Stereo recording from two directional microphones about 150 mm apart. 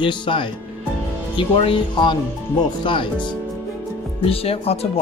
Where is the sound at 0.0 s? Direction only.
35° left (ahead or behind).